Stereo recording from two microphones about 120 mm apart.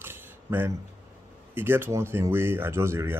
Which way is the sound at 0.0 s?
20° right (ahead or behind).